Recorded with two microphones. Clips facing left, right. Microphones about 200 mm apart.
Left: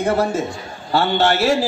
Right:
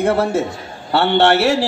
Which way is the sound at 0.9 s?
70° right (ahead or behind).